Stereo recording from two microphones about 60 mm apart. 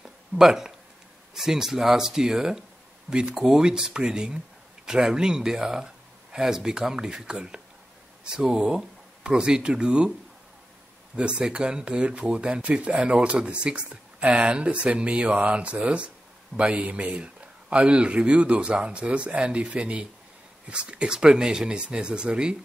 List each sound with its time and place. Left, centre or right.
0.4 s speech: centre
11.1 s speech: centre